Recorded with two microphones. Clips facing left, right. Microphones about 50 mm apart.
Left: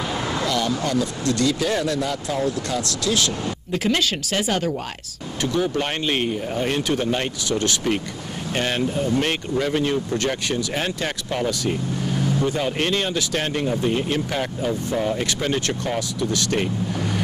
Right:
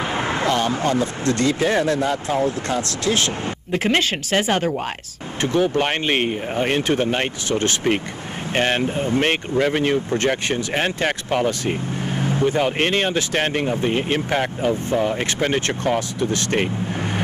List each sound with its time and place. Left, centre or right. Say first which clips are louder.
0.0 s speech: right 3 dB; right